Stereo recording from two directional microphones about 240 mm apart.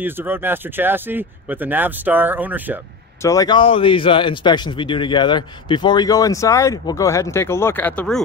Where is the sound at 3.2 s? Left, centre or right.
Centre.